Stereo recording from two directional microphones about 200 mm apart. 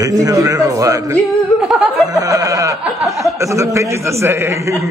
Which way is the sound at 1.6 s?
Centre (ahead or behind).